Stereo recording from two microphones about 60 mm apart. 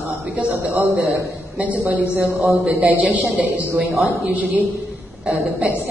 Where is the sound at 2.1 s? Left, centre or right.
Right.